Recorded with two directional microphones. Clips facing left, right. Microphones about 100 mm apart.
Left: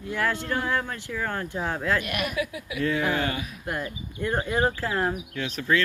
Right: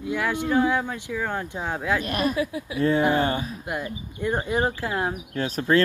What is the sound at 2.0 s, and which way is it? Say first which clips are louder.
Speech: right 4 dB; 35° right (ahead or behind).